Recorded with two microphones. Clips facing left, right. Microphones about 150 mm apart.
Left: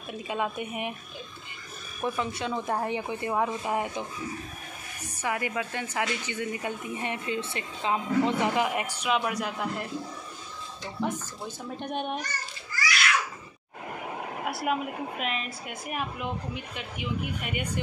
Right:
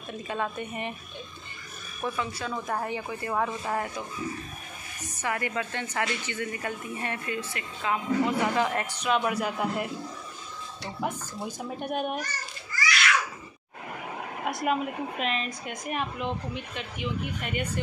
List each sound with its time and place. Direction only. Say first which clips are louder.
0.3 s speech: left 1 dB; 10° left (ahead or behind)
2.0 s speech: left 2 dB; 20° left (ahead or behind)
5.0 s speech: even; 10° left (ahead or behind)
8.6 s speech: right 1 dB; 10° left (ahead or behind); by 9.8 s 5° right (ahead or behind)
11.0 s a child's voice: left 1 dB; 10° right (ahead or behind)
14.4 s speech: right 2 dB; 5° left (ahead or behind)